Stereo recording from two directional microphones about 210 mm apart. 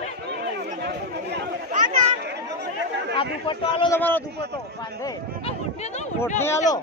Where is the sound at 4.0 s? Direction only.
10° left (ahead or behind).